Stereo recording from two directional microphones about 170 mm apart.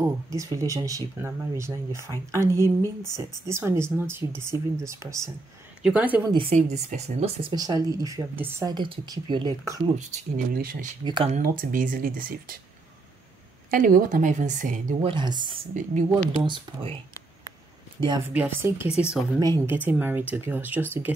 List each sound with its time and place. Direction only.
0.0 s speech: 20° right (ahead or behind)
5.8 s speech: 5° right (ahead or behind)
6.2 s speech: 30° right (ahead or behind)
7.5 s speech: 20° right (ahead or behind)
8.7 s speech: 30° right (ahead or behind)
9.9 s a woman's voice: 40° right (ahead or behind)
10.5 s speech: 60° right (ahead or behind)
11.1 s speech: 30° right (ahead or behind)
11.4 s speech: 55° right (ahead or behind)
13.7 s a woman's voice: 55° right (ahead or behind)
15.0 s speech: 30° right (ahead or behind)
15.7 s a woman's voice: 45° right (ahead or behind)
16.4 s speech: 30° right (ahead or behind)
18.3 s speech: 10° right (ahead or behind)